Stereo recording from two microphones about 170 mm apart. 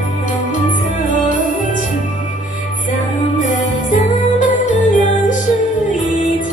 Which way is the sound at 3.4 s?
50° left (ahead or behind).